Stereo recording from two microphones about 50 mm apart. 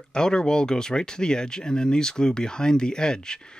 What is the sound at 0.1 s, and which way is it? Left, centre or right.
Speech, centre.